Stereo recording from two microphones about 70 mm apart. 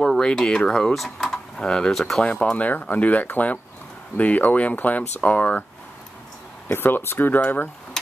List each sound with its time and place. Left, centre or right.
0.0 s speech: centre
2.5 s speech: left
6.7 s speech: left